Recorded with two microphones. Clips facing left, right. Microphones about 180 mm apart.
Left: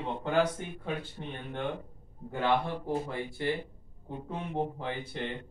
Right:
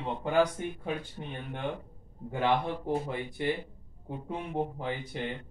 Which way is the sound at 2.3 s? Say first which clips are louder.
Right 1 dB; 15° right (ahead or behind).